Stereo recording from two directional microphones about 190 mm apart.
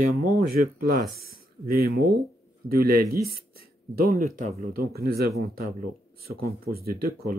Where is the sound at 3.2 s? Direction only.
50° right (ahead or behind).